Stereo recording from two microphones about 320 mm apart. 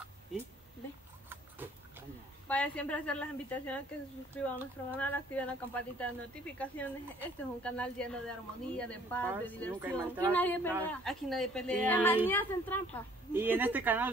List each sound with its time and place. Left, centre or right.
1.3 s pig: centre
2.4 s speech: centre
9.8 s speech: centre
10.3 s speech: centre
13.3 s speech: centre